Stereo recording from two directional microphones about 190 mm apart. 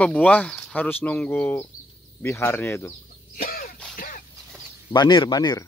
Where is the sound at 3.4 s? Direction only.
50° left (ahead or behind).